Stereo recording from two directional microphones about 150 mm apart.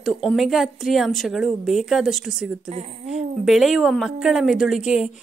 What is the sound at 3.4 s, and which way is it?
Speech, centre (ahead or behind).